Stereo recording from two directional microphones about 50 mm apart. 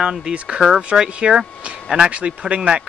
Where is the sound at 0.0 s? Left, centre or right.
Centre.